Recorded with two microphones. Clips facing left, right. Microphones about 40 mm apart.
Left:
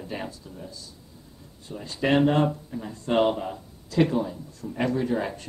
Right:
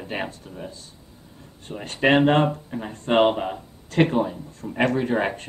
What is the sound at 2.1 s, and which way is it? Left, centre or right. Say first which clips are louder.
Speech: right 3 dB; right.